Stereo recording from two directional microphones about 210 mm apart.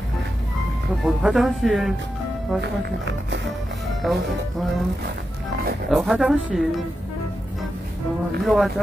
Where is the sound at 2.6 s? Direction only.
55° right (ahead or behind).